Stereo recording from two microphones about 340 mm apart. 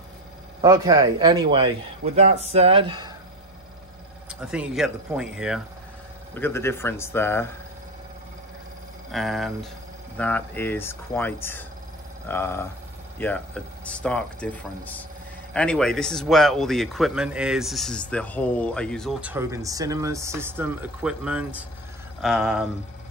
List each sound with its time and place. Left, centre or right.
0.6 s a man's voice: centre
4.3 s a man's voice: centre
9.1 s a man's voice: centre